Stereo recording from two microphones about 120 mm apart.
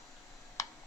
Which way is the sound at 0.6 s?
25° left (ahead or behind).